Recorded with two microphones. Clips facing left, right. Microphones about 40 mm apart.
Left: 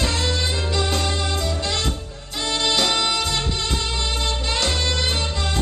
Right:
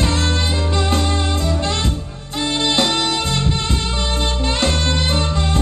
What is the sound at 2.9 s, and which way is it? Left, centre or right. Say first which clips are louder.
Music: right 2 dB; centre.